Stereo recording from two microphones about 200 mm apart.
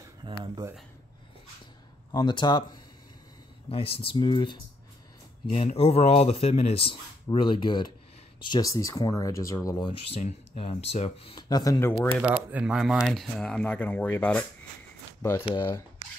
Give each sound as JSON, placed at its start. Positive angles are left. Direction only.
{"t": 0.2, "sound": "speech", "side_deg": -20}
{"t": 2.1, "sound": "speech", "side_deg": 25}
{"t": 11.3, "sound": "speech", "side_deg": 20}
{"t": 12.2, "sound": "speech", "side_deg": -5}
{"t": 15.5, "sound": "speech", "side_deg": 15}